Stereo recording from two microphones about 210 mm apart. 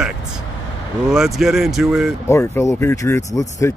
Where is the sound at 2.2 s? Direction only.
10° left (ahead or behind).